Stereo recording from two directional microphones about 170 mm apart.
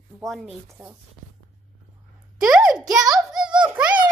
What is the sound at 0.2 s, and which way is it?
Speech, centre (ahead or behind).